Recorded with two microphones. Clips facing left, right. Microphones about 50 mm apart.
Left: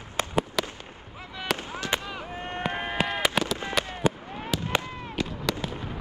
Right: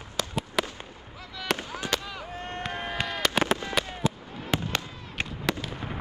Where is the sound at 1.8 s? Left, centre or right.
Left.